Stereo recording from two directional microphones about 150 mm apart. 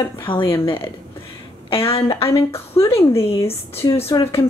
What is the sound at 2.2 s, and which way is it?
Speech, 40° left (ahead or behind).